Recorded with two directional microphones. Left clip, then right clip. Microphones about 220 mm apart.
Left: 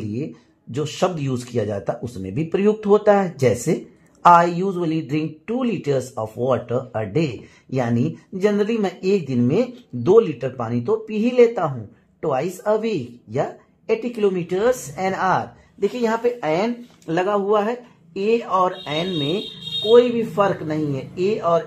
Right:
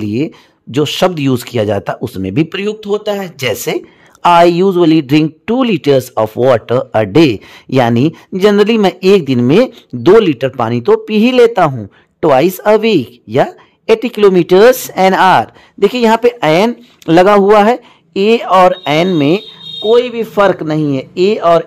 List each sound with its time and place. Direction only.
0.1 s speech: 40° right (ahead or behind)